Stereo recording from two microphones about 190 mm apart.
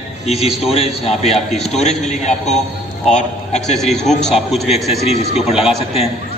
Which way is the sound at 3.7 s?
Centre (ahead or behind).